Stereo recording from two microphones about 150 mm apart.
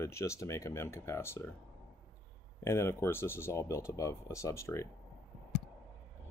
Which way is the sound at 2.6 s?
15° left (ahead or behind).